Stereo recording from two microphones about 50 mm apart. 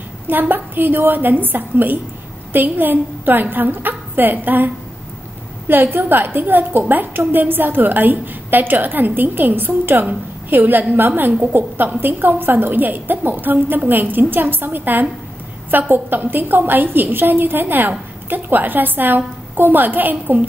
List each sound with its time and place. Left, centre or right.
0.3 s a woman's voice: right
5.7 s a woman's voice: right